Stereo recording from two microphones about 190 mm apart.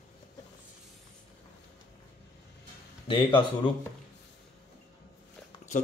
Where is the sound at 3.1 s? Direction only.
25° left (ahead or behind).